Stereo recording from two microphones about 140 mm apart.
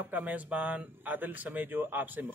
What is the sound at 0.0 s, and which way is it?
Speech, 10° right (ahead or behind).